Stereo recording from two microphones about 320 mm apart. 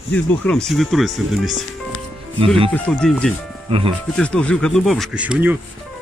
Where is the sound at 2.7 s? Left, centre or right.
Centre.